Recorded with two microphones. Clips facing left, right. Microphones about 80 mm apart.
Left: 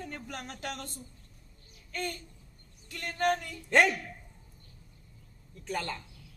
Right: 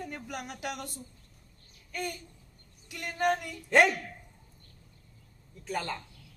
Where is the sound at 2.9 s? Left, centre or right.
Centre.